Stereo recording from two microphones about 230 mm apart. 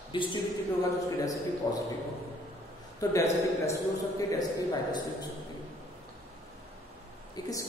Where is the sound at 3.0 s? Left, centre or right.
Centre.